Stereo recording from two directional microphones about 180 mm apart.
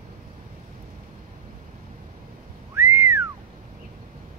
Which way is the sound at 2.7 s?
10° right (ahead or behind).